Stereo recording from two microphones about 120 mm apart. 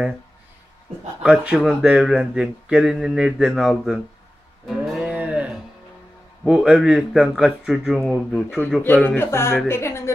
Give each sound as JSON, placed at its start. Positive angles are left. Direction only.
{"t": 1.2, "sound": "speech", "side_deg": -5}
{"t": 4.6, "sound": "music", "side_deg": 0}
{"t": 6.4, "sound": "speech", "side_deg": -10}
{"t": 8.8, "sound": "speech", "side_deg": 15}